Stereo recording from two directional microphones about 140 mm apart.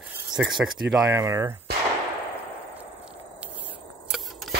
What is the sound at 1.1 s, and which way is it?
Speech, 20° right (ahead or behind).